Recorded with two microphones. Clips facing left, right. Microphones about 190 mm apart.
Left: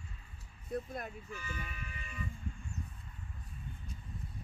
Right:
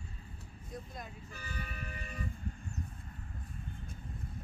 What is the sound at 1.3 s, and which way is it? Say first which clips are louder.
Music: left 1 dB; 35° right (ahead or behind).